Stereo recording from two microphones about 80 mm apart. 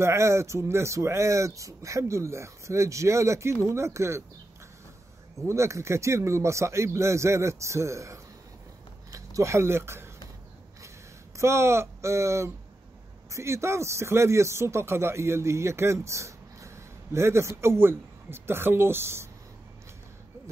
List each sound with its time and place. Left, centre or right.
0.0 s speech: right
5.5 s speech: right
11.3 s speech: right